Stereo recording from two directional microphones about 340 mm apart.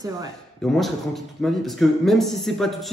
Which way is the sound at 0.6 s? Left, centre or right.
Centre.